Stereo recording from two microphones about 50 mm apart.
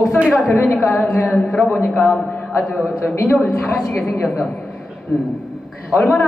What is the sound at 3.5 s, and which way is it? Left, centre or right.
Speech, centre.